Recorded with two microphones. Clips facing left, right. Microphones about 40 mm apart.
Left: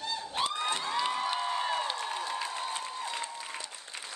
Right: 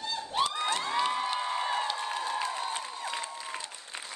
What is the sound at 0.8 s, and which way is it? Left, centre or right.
Cheering, centre.